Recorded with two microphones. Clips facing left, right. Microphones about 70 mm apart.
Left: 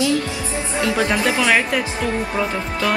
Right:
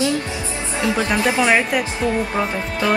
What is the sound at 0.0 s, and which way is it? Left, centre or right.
Music, right.